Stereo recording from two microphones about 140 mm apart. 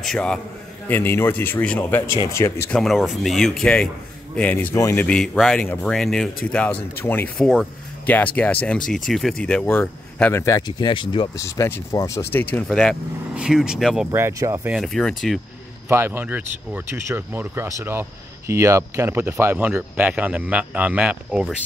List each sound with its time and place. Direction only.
0.0 s speech: 5° left (ahead or behind)
0.8 s speech: 15° left (ahead or behind)
2.7 s speech: centre (ahead or behind)
4.7 s speech: 20° left (ahead or behind)
5.0 s speech: 5° left (ahead or behind)
10.4 s speech: 25° left (ahead or behind)
10.9 s speech: 35° left (ahead or behind)
11.3 s speech: 20° left (ahead or behind)
12.6 s speech: centre (ahead or behind)
14.1 s speech: 20° right (ahead or behind)
14.8 s speech: 5° left (ahead or behind)
15.9 s speech: 15° right (ahead or behind)